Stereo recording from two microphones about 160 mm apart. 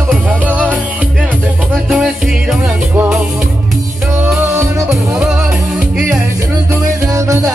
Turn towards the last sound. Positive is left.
turn(degrees=-20)  # may be behind; listen again after turning